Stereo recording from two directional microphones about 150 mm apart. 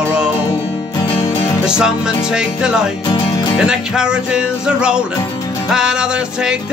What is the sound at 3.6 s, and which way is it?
Music, 5° right (ahead or behind).